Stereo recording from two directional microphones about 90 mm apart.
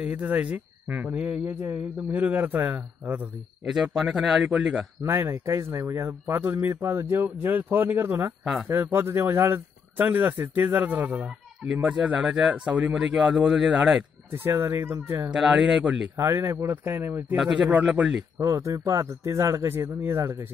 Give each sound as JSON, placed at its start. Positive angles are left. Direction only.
{"t": 0.0, "sound": "speech", "side_deg": -15}
{"t": 3.6, "sound": "speech", "side_deg": -5}
{"t": 5.0, "sound": "speech", "side_deg": -30}
{"t": 14.3, "sound": "speech", "side_deg": -25}
{"t": 15.3, "sound": "speech", "side_deg": -5}
{"t": 16.2, "sound": "speech", "side_deg": -30}
{"t": 17.4, "sound": "speech", "side_deg": -10}
{"t": 18.4, "sound": "speech", "side_deg": -35}